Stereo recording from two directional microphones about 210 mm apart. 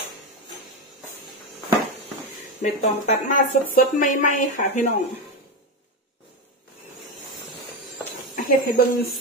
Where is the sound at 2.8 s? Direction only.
35° left (ahead or behind).